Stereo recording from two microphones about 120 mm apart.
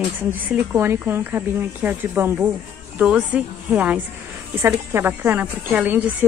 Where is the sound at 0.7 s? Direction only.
20° right (ahead or behind).